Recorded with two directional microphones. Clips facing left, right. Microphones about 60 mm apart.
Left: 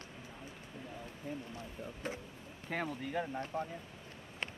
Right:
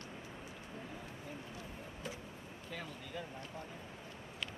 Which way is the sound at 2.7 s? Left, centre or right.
Left.